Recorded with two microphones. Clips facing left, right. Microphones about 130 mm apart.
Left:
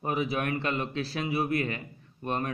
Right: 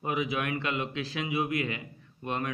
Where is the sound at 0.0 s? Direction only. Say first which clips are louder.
Left 1 dB; 40° left (ahead or behind).